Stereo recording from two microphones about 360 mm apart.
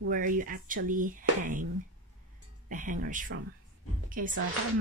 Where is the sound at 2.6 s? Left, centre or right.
Right.